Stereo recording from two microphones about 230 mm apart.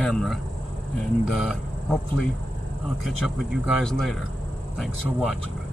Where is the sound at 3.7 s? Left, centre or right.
Centre.